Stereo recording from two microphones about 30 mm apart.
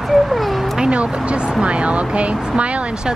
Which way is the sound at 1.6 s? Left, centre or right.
Right.